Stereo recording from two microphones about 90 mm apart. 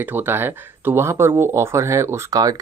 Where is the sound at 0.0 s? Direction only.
20° right (ahead or behind).